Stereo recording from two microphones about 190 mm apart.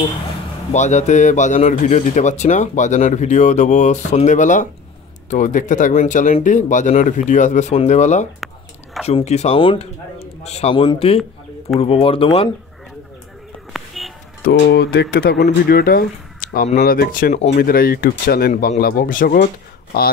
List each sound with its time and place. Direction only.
0.7 s a man's voice: 40° left (ahead or behind)
13.7 s music: centre (ahead or behind)
14.4 s speech: 60° left (ahead or behind)